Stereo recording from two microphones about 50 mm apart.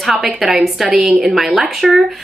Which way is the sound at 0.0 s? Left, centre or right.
Centre.